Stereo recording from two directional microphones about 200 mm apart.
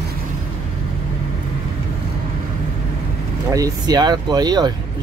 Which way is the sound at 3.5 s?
20° right (ahead or behind).